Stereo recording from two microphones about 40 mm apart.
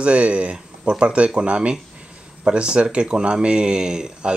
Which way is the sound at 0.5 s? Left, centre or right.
Right.